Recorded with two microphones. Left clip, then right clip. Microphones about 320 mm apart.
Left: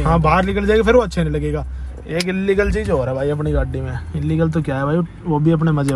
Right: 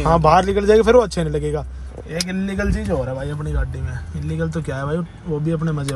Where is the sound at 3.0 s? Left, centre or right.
Left.